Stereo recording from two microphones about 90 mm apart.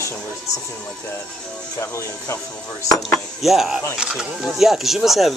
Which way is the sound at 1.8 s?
30° left (ahead or behind).